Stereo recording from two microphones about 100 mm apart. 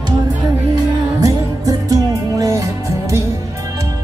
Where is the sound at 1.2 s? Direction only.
35° right (ahead or behind).